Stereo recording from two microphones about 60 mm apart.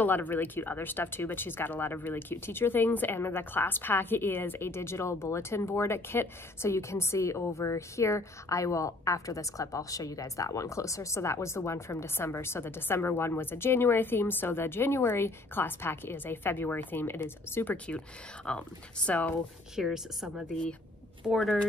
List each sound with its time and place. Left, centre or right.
0.0 s a woman's voice: left
17.8 s speech: centre
19.7 s a woman's voice: centre